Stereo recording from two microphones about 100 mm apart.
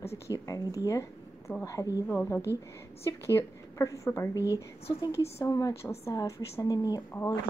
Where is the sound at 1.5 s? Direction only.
15° left (ahead or behind).